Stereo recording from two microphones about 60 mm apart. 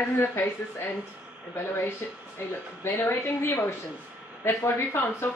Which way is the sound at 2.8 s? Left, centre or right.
Left.